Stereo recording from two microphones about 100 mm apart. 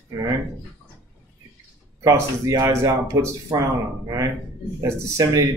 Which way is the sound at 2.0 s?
30° right (ahead or behind).